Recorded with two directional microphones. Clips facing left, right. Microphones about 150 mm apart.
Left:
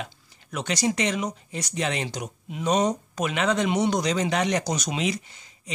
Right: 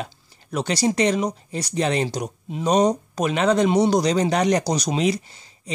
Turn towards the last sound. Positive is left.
turn(degrees=-35)  # may be behind; listen again after turning